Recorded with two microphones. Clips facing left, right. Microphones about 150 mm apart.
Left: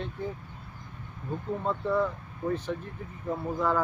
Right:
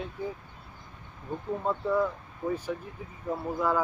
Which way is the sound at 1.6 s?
10° right (ahead or behind).